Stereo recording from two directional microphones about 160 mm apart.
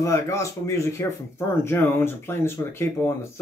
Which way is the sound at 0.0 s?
20° left (ahead or behind).